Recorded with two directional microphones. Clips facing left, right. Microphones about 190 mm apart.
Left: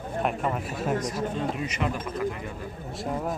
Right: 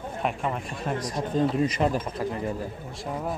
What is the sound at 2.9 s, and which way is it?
Speech, centre (ahead or behind).